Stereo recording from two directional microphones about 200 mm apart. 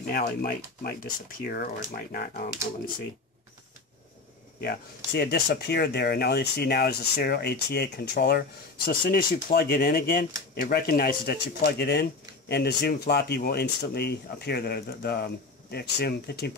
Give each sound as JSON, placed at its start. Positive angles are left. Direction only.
{"t": 0.0, "sound": "speech", "side_deg": 45}
{"t": 4.6, "sound": "speech", "side_deg": 50}